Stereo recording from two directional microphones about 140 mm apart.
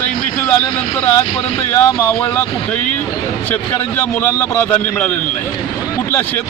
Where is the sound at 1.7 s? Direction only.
10° left (ahead or behind).